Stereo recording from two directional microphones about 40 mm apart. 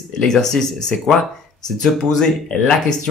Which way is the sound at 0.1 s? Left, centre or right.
Centre.